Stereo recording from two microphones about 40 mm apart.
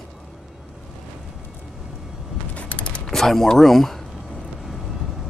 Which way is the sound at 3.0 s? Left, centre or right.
Centre.